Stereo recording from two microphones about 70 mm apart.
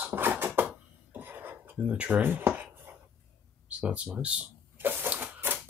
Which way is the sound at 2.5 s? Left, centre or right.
Right.